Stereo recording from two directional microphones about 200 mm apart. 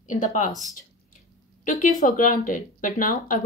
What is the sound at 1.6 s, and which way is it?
Speech, 40° left (ahead or behind).